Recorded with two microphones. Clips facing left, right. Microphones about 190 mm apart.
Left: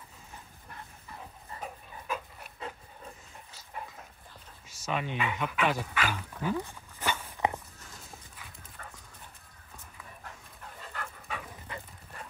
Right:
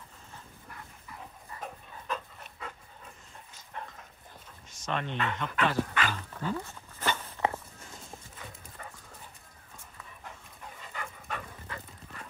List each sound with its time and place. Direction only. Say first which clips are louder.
1.6 s dog: even; 5° left (ahead or behind)
3.5 s dog: even; 10° left (ahead or behind)
4.6 s speech: left 1 dB; 5° left (ahead or behind)
8.8 s dog: right 2 dB; 10° right (ahead or behind)
10.2 s dog: right 3 dB; 5° right (ahead or behind)
11.7 s dog: left 1 dB; 20° left (ahead or behind)